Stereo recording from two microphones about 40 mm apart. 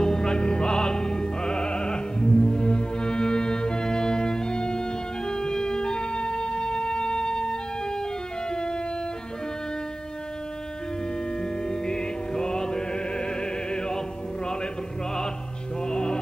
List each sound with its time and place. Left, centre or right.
0.0 s music: centre
5.3 s organ: centre
8.5 s music: left
11.6 s music: centre
15.9 s music: left